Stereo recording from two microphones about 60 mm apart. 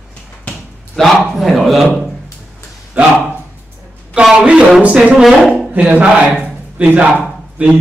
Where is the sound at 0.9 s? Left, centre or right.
Centre.